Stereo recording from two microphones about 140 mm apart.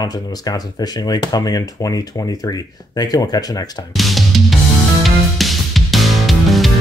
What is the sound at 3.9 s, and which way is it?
Music, centre (ahead or behind).